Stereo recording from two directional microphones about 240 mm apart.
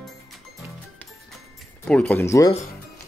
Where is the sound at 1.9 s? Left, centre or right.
Centre.